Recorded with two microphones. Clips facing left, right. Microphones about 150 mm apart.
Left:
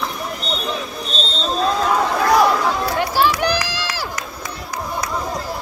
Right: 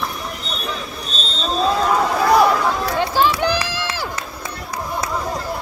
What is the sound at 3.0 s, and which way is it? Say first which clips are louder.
Run: right 1 dB; 20° right (ahead or behind).